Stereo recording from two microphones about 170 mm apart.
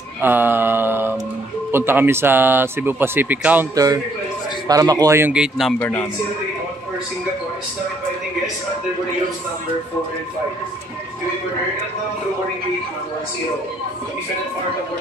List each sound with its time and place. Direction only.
0.2 s speech: 10° right (ahead or behind)
3.7 s a man's voice: 20° right (ahead or behind); by 5.8 s 5° right (ahead or behind)
5.8 s a man's voice: 10° left (ahead or behind)